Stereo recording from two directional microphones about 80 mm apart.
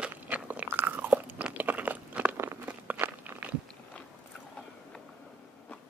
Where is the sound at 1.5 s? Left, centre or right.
Right.